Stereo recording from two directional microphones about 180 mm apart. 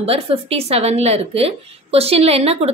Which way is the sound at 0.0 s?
35° right (ahead or behind).